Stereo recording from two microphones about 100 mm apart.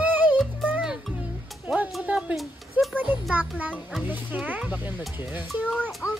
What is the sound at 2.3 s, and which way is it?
Speech, centre (ahead or behind).